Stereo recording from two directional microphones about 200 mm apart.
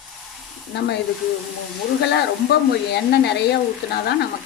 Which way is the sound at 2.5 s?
55° left (ahead or behind).